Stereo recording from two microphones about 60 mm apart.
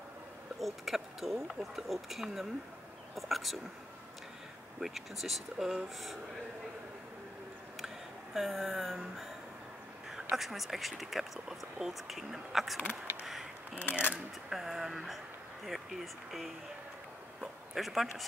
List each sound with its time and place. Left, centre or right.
0.6 s speech: centre
4.7 s speech: centre
7.8 s a sound: centre
10.1 s speech: centre
13.9 s speech: right
14.5 s speech: centre